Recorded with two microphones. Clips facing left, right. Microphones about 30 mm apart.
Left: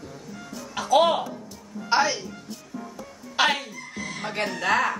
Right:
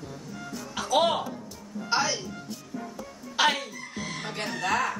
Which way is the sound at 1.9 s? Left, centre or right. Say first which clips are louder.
Left 5 dB; left.